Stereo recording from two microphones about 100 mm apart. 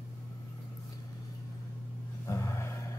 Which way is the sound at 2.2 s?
30° left (ahead or behind).